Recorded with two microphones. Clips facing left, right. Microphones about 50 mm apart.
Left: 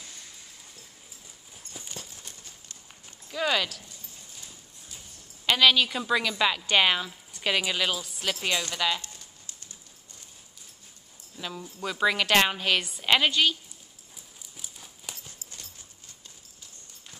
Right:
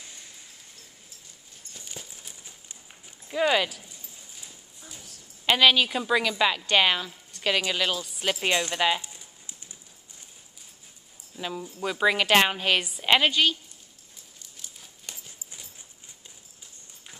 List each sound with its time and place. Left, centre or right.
1.7 s clip-clop: centre
2.0 s clip-clop: centre
3.3 s speech: centre
4.4 s clip-clop: centre
5.5 s speech: centre
8.2 s a sound: centre
11.3 s a woman's voice: centre
14.6 s horse: centre
15.3 s clip-clop: centre